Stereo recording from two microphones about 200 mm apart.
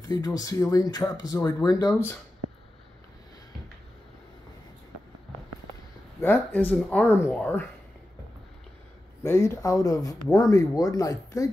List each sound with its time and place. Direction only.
0.1 s speech: 20° left (ahead or behind)
6.2 s speech: 10° left (ahead or behind)
9.2 s speech: 15° left (ahead or behind)